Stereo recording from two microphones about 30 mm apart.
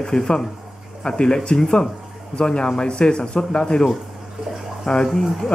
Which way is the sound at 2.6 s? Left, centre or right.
Left.